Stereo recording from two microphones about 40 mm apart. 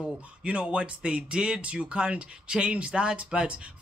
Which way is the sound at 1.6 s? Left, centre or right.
Right.